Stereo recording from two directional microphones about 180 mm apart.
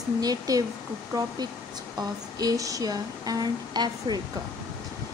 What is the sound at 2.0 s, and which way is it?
Speech, 20° right (ahead or behind).